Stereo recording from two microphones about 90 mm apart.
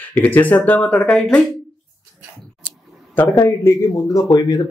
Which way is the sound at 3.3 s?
35° left (ahead or behind).